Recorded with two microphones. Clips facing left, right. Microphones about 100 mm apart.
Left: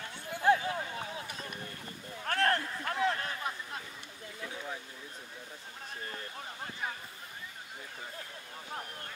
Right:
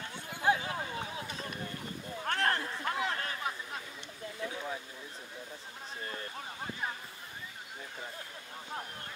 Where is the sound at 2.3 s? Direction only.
20° right (ahead or behind).